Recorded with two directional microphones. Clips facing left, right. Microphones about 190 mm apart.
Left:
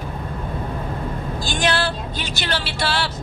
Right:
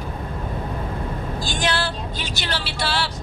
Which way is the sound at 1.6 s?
60° left (ahead or behind).